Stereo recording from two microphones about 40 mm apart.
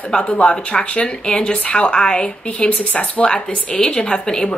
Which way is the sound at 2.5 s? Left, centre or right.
Left.